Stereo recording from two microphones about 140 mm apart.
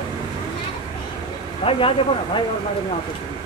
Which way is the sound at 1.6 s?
40° left (ahead or behind).